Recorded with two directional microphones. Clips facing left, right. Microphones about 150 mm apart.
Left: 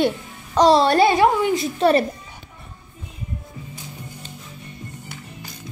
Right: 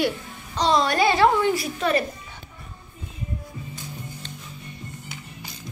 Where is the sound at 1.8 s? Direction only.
30° left (ahead or behind).